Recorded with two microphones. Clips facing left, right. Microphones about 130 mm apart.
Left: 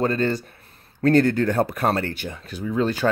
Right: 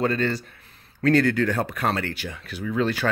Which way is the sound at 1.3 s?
35° left (ahead or behind).